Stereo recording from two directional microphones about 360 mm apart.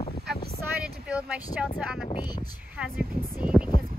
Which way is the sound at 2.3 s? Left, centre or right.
Centre.